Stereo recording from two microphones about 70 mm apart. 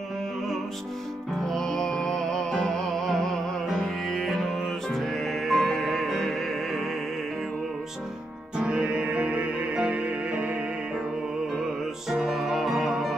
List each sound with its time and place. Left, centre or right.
1.4 s music: centre
8.5 s music: centre
12.1 s music: centre